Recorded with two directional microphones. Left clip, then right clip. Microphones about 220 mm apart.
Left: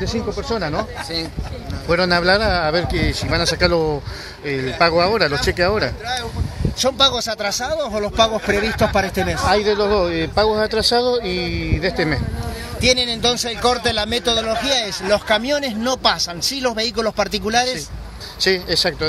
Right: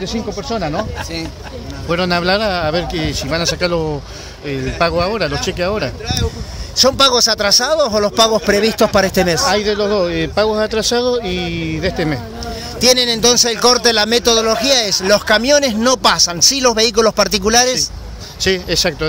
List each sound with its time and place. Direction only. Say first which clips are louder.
0.0 s speech: right 1 dB; 5° left (ahead or behind)
1.9 s a man's voice: even; centre (ahead or behind)
6.8 s speech: right 6 dB; 40° right (ahead or behind)
9.5 s a man's voice: right 1 dB; centre (ahead or behind)
12.8 s a man's voice: right 5 dB; 40° right (ahead or behind)
18.4 s speech: right 2 dB; 10° right (ahead or behind)